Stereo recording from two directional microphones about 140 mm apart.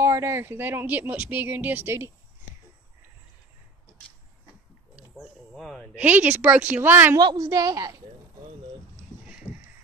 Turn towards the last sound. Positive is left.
turn(degrees=-25)  # may be behind; listen again after turning